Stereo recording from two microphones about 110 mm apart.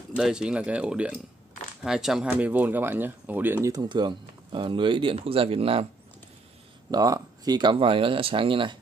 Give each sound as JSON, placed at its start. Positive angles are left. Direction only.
{"t": 0.1, "sound": "speech", "side_deg": -5}
{"t": 2.2, "sound": "speech", "side_deg": -15}
{"t": 3.9, "sound": "speech", "side_deg": -45}
{"t": 6.9, "sound": "speech", "side_deg": -35}